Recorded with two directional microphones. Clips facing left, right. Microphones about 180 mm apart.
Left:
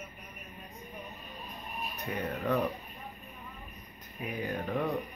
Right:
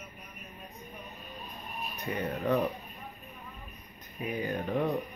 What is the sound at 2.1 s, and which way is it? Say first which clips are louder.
Speech: right 2 dB; centre (ahead or behind).